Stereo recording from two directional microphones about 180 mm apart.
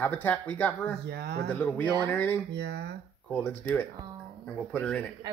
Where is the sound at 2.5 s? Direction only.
65° right (ahead or behind).